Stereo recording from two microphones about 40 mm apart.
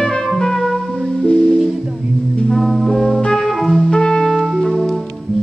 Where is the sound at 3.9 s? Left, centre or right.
Centre.